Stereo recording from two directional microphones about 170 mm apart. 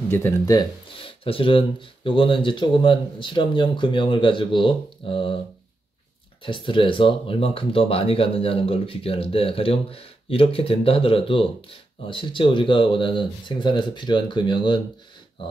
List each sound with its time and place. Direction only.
0.1 s speech: 20° left (ahead or behind)
6.4 s speech: 30° left (ahead or behind)